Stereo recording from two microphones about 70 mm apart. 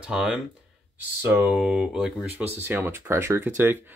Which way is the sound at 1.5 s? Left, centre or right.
Centre.